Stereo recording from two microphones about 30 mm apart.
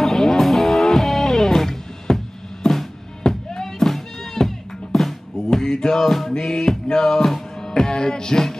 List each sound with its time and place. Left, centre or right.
0.0 s music: centre
3.3 s music: left
3.6 s music: centre
6.0 s music: centre
7.9 s music: left